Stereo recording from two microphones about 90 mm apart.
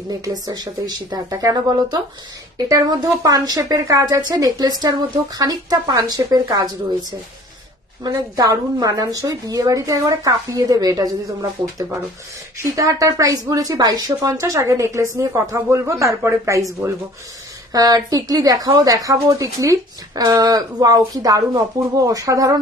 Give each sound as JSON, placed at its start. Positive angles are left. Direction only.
{"t": 0.1, "sound": "a woman's voice", "side_deg": -45}
{"t": 12.7, "sound": "speech", "side_deg": -40}
{"t": 17.7, "sound": "a woman's voice", "side_deg": -45}